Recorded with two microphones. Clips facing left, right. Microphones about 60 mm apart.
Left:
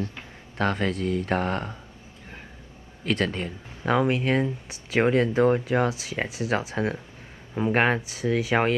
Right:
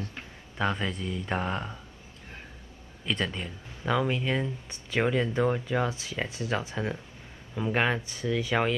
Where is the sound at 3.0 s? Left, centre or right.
Left.